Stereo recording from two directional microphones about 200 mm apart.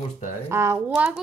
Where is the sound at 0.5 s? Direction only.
15° right (ahead or behind).